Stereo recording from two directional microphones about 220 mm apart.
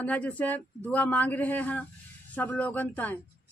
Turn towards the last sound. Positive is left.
turn(degrees=5)  # may be behind; listen again after turning